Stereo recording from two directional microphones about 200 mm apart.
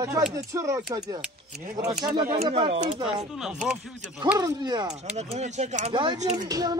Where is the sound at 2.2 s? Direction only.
35° right (ahead or behind).